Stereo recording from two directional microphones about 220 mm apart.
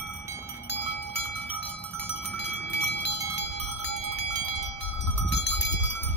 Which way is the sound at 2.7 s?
50° left (ahead or behind).